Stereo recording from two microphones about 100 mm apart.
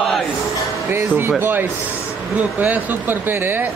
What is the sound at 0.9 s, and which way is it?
Speech, 25° right (ahead or behind).